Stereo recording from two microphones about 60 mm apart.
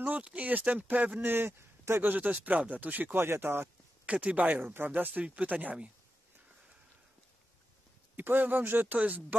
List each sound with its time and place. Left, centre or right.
0.2 s speech: right
1.3 s speech: right
2.1 s speech: right
3.2 s speech: right
4.0 s speech: right
8.2 s speech: right